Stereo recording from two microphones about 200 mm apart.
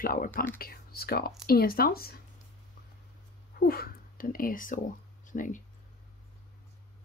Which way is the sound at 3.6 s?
50° left (ahead or behind).